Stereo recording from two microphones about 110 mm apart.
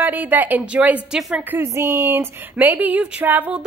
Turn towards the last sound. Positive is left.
turn(degrees=-15)  # may be behind; listen again after turning